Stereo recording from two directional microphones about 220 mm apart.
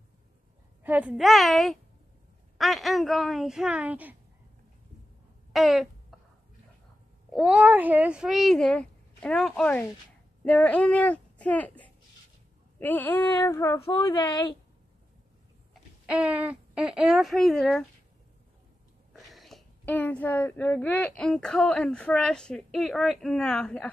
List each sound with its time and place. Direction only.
0.8 s speech: 5° right (ahead or behind)
5.5 s a sound: centre (ahead or behind)
7.2 s speech: 5° right (ahead or behind); by 14.4 s 20° left (ahead or behind)
15.7 s speech: 5° right (ahead or behind)
19.1 s speech: centre (ahead or behind)